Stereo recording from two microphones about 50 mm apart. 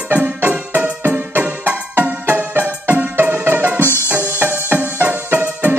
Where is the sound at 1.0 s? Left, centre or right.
Right.